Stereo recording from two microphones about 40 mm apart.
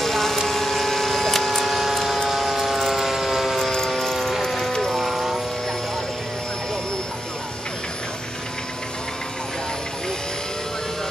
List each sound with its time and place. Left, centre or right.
0.0 s a sound: centre
0.5 s printer: centre
2.2 s ratchet: centre
3.6 s a sound: centre
4.1 s music: centre
5.0 s music: centre